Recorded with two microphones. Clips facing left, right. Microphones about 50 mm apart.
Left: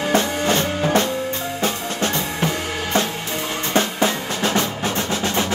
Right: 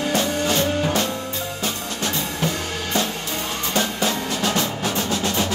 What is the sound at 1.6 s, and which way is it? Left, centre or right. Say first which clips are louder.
Music: left 5 dB; left.